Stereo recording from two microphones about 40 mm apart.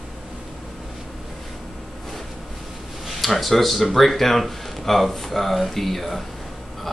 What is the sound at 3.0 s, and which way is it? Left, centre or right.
Speech, centre.